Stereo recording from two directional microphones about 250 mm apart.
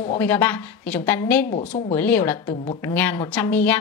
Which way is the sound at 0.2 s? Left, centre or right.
Centre.